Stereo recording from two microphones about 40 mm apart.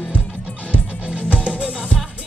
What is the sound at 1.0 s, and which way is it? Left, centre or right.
Music, right.